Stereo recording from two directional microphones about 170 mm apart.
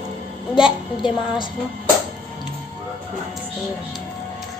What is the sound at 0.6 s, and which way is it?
Speech, 30° left (ahead or behind).